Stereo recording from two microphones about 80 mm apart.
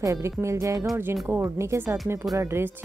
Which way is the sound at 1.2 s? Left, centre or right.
Right.